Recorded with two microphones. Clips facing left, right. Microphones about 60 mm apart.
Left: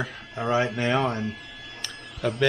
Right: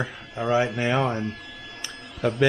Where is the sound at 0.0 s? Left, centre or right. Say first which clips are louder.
Right 1 dB; centre.